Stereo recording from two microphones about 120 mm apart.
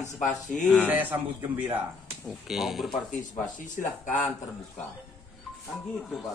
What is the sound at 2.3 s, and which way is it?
Speech, centre (ahead or behind).